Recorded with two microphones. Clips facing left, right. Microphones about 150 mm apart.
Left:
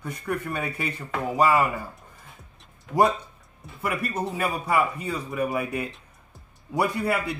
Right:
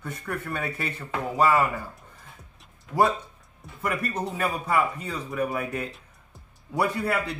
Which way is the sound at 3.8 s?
10° left (ahead or behind).